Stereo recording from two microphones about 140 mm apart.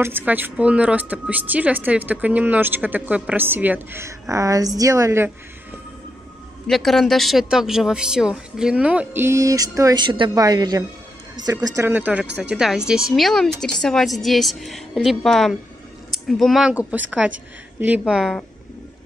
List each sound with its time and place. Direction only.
0.0 s a woman's voice: 15° right (ahead or behind)
6.7 s a woman's voice: centre (ahead or behind)